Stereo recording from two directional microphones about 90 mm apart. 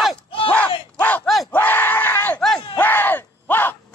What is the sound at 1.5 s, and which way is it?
Crowd, 20° left (ahead or behind).